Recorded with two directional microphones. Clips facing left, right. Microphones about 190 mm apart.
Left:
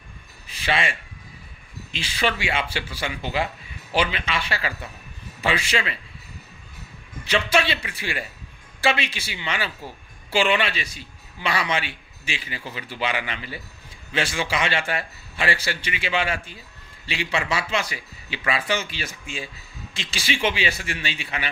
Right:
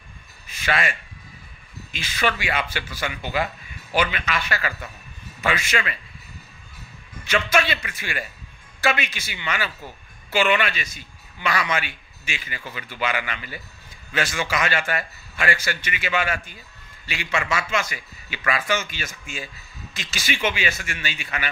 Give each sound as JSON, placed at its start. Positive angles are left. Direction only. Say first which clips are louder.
{"t": 0.5, "sound": "a sound", "louder": "even", "side_deg": 30}
{"t": 1.9, "sound": "a man's voice", "louder": "even", "side_deg": 30}
{"t": 7.2, "sound": "a man's voice", "louder": "even", "side_deg": 30}